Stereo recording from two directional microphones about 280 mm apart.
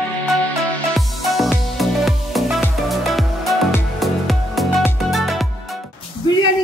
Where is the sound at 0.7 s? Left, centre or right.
Centre.